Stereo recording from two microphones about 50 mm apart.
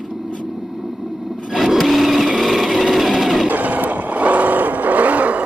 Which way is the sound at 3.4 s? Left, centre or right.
Right.